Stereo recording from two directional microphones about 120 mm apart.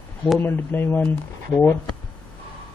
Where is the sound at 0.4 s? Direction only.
20° left (ahead or behind).